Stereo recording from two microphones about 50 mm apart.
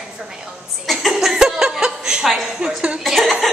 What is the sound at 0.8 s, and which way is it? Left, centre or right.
Speech, centre.